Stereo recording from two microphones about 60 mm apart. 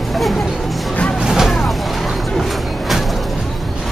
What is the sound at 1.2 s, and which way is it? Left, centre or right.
Vehicle, centre.